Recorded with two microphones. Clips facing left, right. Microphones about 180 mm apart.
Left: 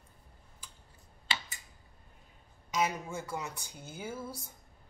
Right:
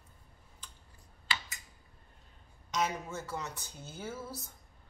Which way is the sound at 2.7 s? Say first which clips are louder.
Left 1 dB; 10° left (ahead or behind).